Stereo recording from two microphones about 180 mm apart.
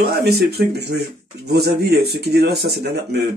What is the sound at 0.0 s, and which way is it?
Speech, 60° right (ahead or behind).